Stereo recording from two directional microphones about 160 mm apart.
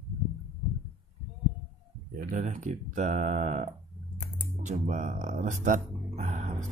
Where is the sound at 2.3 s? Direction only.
50° right (ahead or behind).